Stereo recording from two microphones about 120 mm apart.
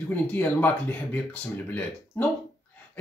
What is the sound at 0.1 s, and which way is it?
Speech, 15° left (ahead or behind).